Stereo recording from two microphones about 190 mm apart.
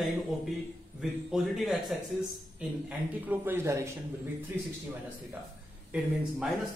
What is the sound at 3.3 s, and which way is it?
Speech, 15° right (ahead or behind).